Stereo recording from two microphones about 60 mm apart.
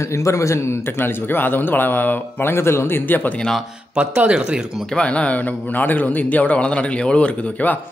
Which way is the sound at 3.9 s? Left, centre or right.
Right.